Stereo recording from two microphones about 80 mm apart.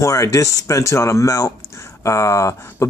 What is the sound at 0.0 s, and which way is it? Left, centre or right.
Speech, left.